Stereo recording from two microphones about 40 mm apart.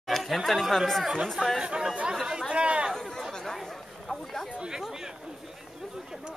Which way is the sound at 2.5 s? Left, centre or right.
Right.